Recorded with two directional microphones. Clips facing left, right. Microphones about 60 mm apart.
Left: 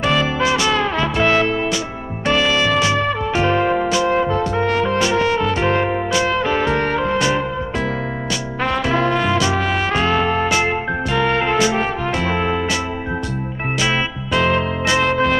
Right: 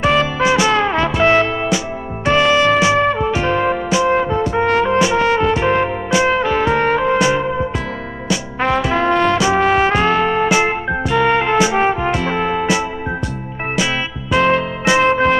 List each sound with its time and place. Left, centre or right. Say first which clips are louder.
0.0 s trumpet: right 3 dB; centre
2.4 s music: right 6 dB; centre
2.7 s music: right 4 dB; centre
3.0 s trumpet: right 3 dB; centre
4.8 s music: right 3 dB; centre
9.1 s trumpet: right 4 dB; centre
9.4 s trumpet: right 5 dB; centre
10.0 s music: right 3 dB; right
14.3 s music: right 3 dB; centre